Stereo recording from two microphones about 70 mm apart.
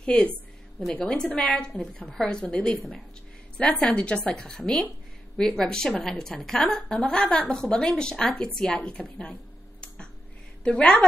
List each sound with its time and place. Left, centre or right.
0.0 s a woman's voice: centre